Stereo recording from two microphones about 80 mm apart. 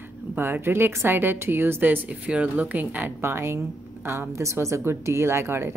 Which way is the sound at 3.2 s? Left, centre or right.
Right.